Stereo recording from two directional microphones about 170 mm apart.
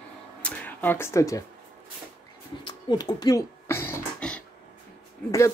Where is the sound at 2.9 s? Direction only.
25° left (ahead or behind); by 4.4 s 5° left (ahead or behind).